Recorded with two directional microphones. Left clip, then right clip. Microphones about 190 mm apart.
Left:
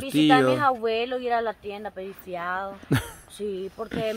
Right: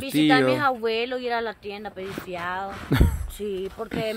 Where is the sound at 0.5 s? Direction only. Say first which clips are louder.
Even; 20° right (ahead or behind).